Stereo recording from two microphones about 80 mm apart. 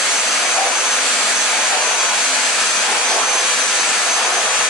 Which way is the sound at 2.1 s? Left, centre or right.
Centre.